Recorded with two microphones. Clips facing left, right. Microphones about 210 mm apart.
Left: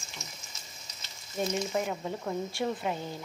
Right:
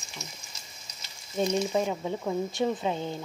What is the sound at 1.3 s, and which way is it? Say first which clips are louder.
A woman's voice: right 4 dB; 20° right (ahead or behind).